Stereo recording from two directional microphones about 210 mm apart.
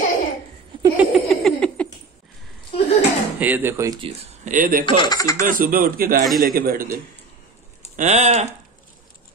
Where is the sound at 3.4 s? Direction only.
10° right (ahead or behind).